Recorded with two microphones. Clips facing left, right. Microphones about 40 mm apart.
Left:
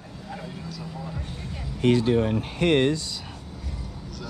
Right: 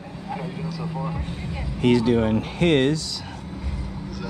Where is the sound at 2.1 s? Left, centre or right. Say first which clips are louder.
Right 2 dB; right.